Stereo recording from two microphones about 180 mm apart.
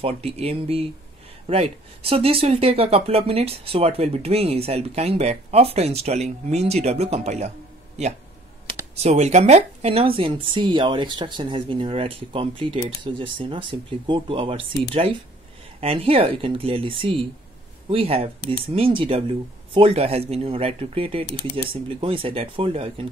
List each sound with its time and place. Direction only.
0.0 s speech: 35° right (ahead or behind)
8.9 s speech: 40° right (ahead or behind)